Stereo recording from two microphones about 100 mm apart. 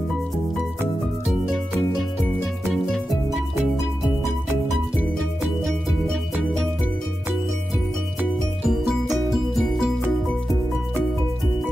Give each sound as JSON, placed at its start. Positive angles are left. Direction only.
{"t": 8.6, "sound": "music", "side_deg": 0}